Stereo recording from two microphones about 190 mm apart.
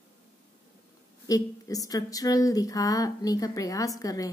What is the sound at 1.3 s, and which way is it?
Speech, 20° left (ahead or behind).